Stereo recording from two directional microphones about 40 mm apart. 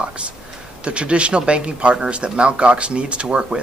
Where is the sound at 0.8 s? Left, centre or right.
Right.